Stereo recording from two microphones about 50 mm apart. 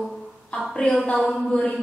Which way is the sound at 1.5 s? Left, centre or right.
Centre.